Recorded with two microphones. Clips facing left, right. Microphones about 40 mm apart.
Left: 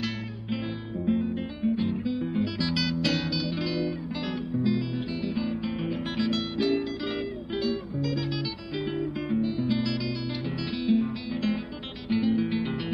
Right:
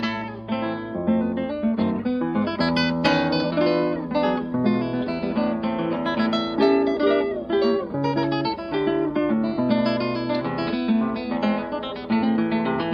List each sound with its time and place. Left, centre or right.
1.0 s guitar: right
4.6 s music: right
8.8 s guitar: right